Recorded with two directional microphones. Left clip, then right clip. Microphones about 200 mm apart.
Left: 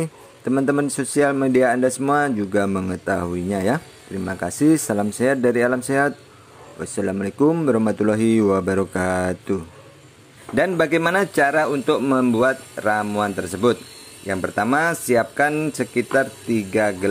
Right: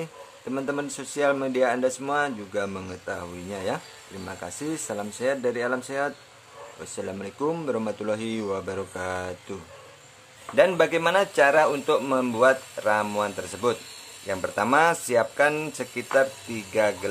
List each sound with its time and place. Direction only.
0.0 s speech: 20° left (ahead or behind); by 12.4 s 5° left (ahead or behind)
12.4 s speech: 20° left (ahead or behind)